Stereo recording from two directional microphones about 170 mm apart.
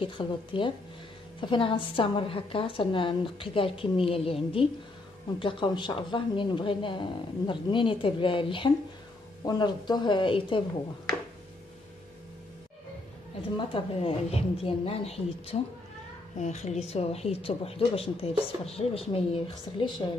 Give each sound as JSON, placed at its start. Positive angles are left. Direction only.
{"t": 0.0, "sound": "speech", "side_deg": 30}
{"t": 13.6, "sound": "speech", "side_deg": 30}